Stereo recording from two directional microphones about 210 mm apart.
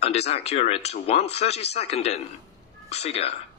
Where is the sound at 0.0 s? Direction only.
30° left (ahead or behind).